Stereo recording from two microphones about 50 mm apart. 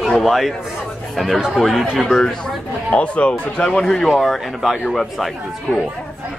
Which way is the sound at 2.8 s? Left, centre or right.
Left.